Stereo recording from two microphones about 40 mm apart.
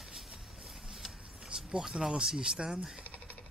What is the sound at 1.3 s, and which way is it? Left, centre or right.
Speech, centre.